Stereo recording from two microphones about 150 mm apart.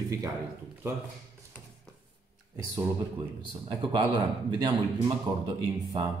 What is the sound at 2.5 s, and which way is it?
Speech, 20° right (ahead or behind).